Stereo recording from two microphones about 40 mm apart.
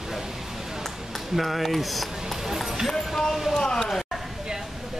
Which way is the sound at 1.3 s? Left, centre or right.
Centre.